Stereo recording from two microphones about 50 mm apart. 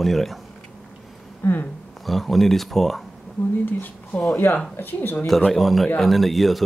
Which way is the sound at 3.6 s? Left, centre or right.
Left.